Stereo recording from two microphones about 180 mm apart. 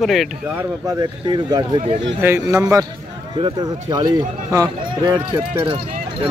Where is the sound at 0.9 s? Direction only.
25° right (ahead or behind).